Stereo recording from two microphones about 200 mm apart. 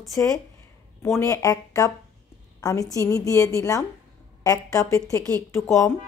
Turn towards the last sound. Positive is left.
turn(degrees=15)  # may be behind; listen again after turning